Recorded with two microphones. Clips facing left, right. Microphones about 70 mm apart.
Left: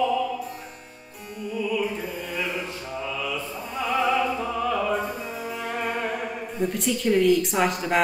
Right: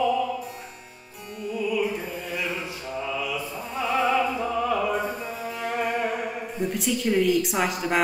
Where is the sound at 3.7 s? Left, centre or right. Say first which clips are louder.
Even; centre.